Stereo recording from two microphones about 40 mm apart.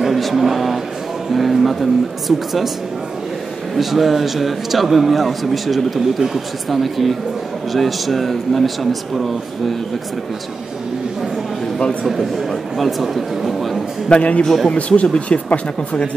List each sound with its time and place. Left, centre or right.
0.0 s a sound: centre
1.3 s a man's voice: centre
3.7 s a man's voice: centre
12.0 s a man's voice: centre
14.0 s a man's voice: left